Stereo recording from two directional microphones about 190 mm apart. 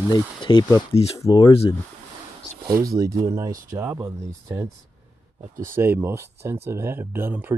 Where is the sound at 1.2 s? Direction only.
20° left (ahead or behind).